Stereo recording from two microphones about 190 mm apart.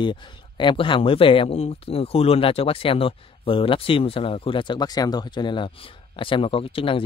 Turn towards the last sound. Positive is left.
turn(degrees=30)  # may be behind; listen again after turning